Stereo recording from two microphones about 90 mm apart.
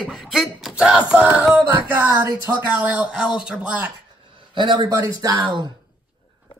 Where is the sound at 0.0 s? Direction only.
Centre (ahead or behind).